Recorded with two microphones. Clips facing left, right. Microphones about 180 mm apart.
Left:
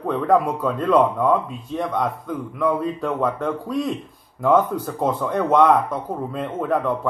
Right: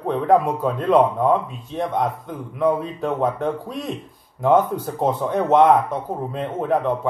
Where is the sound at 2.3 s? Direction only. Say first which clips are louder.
Right 1 dB; 25° right (ahead or behind).